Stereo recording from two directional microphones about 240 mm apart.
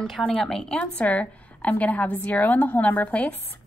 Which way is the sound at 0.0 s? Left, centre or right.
Centre.